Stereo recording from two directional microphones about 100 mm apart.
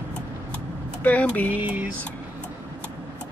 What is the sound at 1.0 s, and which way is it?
Speech, 15° left (ahead or behind).